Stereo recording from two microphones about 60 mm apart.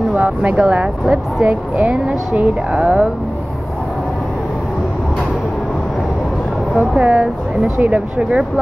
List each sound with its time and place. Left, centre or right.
0.1 s speech: right
7.0 s speech: right
8.2 s speech: centre